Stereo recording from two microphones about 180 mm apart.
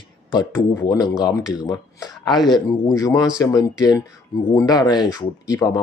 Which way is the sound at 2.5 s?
20° left (ahead or behind).